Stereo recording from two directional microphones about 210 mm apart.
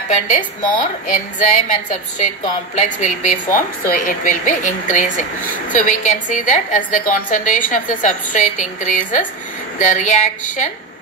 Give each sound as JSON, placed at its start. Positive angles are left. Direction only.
{"t": 0.7, "sound": "a woman's voice", "side_deg": 35}